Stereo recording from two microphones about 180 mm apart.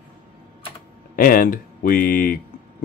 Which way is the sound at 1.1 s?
55° left (ahead or behind).